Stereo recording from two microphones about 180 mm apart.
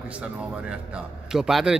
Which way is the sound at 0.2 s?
5° right (ahead or behind).